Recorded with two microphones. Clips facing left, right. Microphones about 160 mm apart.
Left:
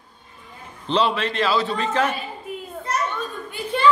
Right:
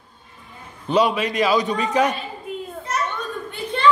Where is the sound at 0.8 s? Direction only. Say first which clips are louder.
Right 2 dB; 10° right (ahead or behind).